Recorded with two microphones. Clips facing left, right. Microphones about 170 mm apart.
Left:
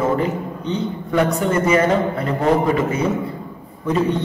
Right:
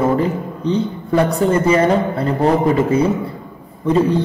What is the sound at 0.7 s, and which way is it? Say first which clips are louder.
A man's voice: right 6 dB; 30° right (ahead or behind).